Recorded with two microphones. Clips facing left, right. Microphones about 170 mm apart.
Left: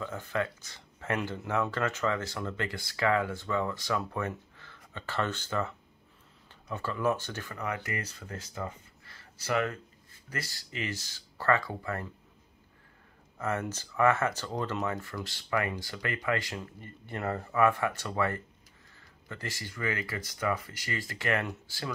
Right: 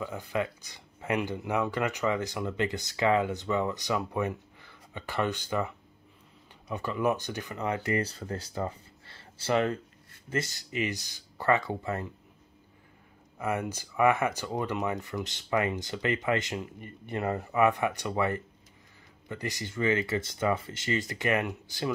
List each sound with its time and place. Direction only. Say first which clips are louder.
0.0 s speech: right 1 dB; 15° right (ahead or behind)
13.4 s speech: right 2 dB; 15° right (ahead or behind)